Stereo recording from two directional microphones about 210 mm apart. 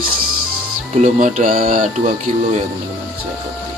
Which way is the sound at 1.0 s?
35° right (ahead or behind).